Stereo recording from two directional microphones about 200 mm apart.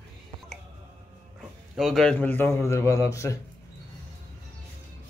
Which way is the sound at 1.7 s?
Centre (ahead or behind).